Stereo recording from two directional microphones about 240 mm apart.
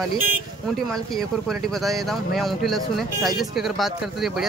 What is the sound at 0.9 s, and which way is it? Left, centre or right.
Speech, centre.